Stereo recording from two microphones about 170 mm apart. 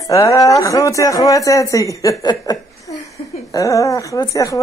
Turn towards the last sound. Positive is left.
turn(degrees=20)  # may be behind; listen again after turning